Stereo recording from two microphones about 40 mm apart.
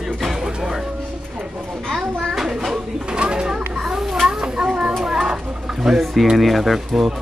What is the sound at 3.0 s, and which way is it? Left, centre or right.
Bird, right.